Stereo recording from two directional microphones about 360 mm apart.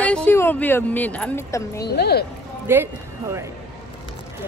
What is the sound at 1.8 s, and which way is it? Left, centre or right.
Speech, left.